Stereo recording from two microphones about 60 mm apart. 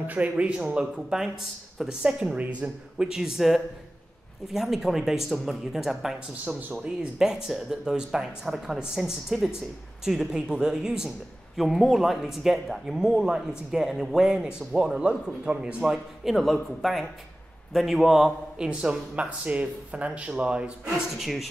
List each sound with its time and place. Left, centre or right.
0.0 s speech: right
0.6 s a woman's voice: centre
3.1 s a woman's voice: centre
6.7 s speech: centre
7.2 s a woman's voice: centre
15.0 s a woman's voice: centre
16.3 s a woman's voice: centre
18.7 s speech: centre
21.2 s speech: centre